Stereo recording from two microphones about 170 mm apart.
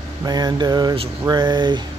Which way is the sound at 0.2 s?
25° right (ahead or behind).